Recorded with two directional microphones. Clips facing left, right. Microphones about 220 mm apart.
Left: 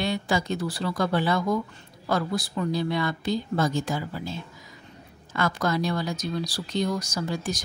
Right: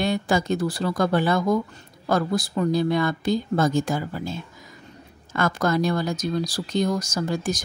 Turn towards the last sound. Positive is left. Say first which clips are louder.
# right 4 dB
turn(degrees=-45)  # may be behind; listen again after turning